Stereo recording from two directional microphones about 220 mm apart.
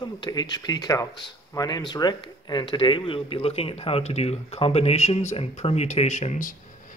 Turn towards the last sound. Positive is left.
turn(degrees=35)  # may be behind; listen again after turning